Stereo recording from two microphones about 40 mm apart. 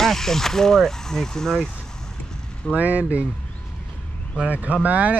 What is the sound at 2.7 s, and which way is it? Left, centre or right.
Speech, right.